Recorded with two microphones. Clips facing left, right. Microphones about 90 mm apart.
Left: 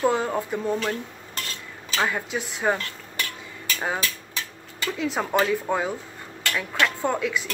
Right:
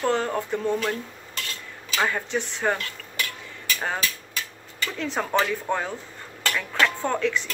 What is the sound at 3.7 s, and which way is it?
Speech, 5° left (ahead or behind).